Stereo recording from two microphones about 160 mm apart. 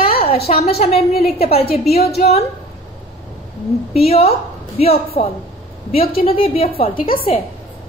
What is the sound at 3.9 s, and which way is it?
A woman's voice, 40° left (ahead or behind).